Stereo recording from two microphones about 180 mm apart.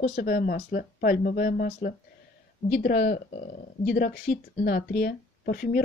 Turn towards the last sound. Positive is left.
turn(degrees=55)  # may be behind; listen again after turning